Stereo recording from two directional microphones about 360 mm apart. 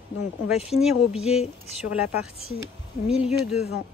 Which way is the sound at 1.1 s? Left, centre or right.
Centre.